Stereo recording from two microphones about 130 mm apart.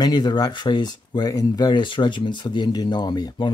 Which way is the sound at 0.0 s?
35° left (ahead or behind).